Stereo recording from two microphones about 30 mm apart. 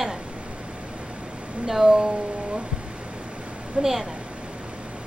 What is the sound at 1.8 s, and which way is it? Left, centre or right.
Speech, right.